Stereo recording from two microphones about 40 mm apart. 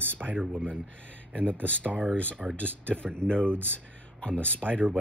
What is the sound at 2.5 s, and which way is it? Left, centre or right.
Speech, left.